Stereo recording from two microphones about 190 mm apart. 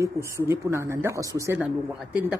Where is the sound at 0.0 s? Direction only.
15° right (ahead or behind).